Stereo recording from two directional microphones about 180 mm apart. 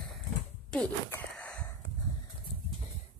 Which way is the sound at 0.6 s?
5° left (ahead or behind).